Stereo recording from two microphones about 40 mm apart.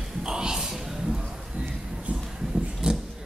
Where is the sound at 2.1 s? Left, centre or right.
Right.